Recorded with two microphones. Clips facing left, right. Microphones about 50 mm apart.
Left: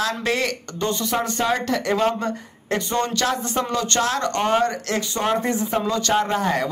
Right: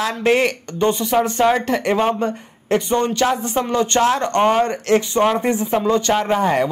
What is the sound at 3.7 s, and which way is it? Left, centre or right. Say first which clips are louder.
Speech: right 8 dB; right.